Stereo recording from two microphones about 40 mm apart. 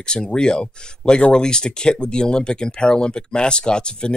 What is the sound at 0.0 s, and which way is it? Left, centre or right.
Speech, centre.